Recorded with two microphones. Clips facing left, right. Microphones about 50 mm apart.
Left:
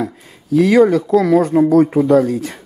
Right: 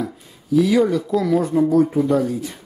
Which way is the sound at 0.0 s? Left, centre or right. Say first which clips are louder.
Left 4 dB; left.